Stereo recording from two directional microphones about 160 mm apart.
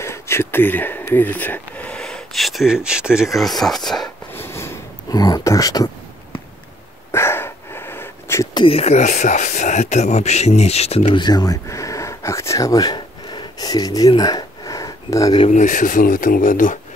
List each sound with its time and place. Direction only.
0.0 s speech: 15° left (ahead or behind)
4.3 s a sound: 15° left (ahead or behind)
7.1 s dog: 15° left (ahead or behind)
8.5 s speech: 35° left (ahead or behind); by 15.4 s 20° left (ahead or behind)
15.4 s speech: 50° left (ahead or behind)